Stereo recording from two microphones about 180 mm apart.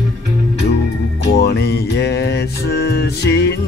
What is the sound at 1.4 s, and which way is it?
Music, 65° left (ahead or behind).